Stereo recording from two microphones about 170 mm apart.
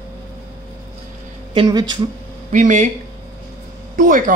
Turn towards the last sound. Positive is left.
turn(degrees=-50)  # may be behind; listen again after turning